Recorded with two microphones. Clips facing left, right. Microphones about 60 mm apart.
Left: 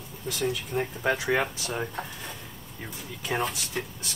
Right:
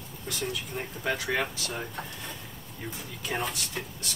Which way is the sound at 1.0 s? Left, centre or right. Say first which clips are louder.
Left 3 dB; centre.